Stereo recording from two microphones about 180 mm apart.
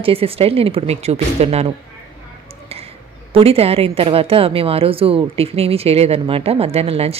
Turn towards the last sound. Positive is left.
turn(degrees=-35)  # may be behind; listen again after turning